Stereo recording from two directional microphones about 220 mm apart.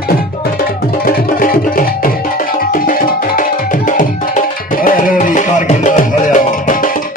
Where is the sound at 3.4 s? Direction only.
35° left (ahead or behind).